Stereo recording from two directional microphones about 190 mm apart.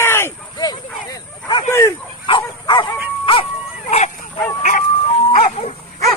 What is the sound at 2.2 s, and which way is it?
Bow-wow, 25° left (ahead or behind).